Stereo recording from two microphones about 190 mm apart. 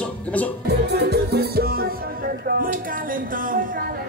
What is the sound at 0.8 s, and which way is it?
Music, 60° right (ahead or behind).